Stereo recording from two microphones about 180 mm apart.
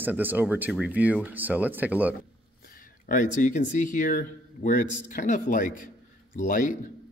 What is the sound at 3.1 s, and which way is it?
Speech, 45° left (ahead or behind).